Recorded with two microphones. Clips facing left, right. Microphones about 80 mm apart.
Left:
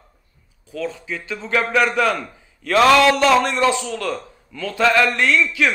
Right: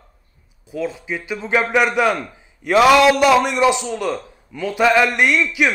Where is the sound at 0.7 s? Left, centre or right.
Centre.